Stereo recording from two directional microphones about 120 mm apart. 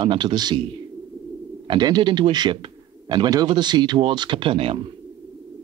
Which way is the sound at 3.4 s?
40° right (ahead or behind).